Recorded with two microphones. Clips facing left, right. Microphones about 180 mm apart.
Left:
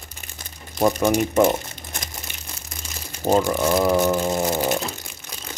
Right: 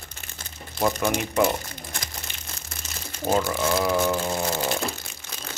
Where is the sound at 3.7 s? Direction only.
40° left (ahead or behind).